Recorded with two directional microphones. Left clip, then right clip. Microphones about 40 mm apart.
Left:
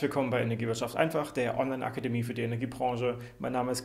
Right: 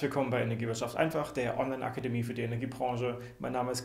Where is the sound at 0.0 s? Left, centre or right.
Left.